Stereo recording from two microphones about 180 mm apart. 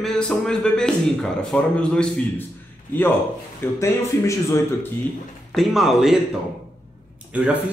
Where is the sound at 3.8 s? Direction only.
15° left (ahead or behind).